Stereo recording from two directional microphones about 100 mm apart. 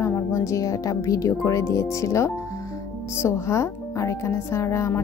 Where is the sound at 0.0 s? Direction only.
25° left (ahead or behind).